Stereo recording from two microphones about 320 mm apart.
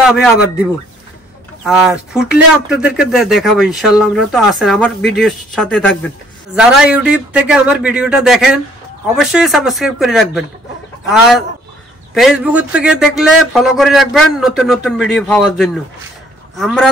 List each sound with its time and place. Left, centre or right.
0.0 s speech: centre